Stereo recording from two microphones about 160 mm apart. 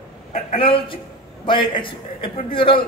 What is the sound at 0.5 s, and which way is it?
A man's voice, 35° left (ahead or behind).